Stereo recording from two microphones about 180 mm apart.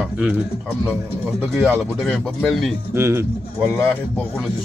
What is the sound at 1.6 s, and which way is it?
Speech, centre (ahead or behind).